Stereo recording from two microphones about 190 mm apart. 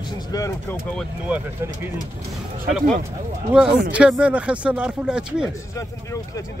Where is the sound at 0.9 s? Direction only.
5° right (ahead or behind).